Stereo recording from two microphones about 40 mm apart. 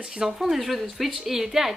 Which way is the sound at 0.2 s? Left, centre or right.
Centre.